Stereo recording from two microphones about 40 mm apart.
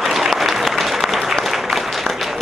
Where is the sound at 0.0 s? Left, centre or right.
Centre.